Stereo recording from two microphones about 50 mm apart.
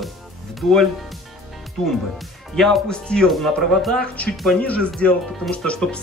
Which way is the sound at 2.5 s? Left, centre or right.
Centre.